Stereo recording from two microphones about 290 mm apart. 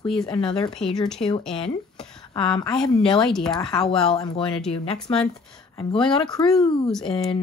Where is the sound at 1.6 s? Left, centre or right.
Centre.